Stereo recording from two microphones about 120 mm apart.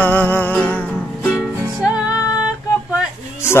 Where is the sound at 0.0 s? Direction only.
15° left (ahead or behind).